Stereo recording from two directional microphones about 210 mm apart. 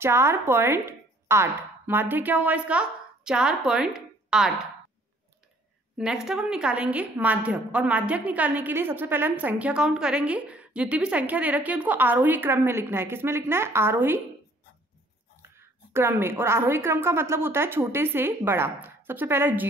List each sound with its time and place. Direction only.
0.0 s speech: 10° right (ahead or behind)
6.2 s a woman's voice: 5° right (ahead or behind)
15.4 s a woman's voice: 10° right (ahead or behind)